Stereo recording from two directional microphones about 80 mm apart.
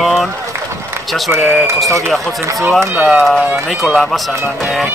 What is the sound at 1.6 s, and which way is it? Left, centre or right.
Speech, right.